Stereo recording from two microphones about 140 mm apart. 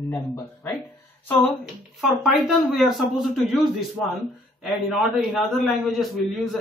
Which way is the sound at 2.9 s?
Centre (ahead or behind).